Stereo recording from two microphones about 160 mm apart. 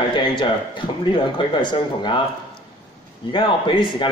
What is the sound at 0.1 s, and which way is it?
A man's voice, 30° left (ahead or behind).